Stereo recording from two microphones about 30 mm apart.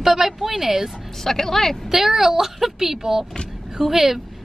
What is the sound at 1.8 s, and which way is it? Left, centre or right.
A woman's voice, centre.